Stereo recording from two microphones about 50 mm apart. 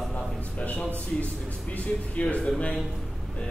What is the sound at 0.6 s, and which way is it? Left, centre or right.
Speech, left.